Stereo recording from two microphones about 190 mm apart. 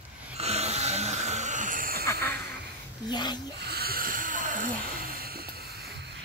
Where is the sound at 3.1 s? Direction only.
20° left (ahead or behind).